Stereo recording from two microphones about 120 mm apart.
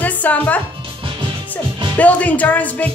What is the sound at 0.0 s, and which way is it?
Music, 15° left (ahead or behind).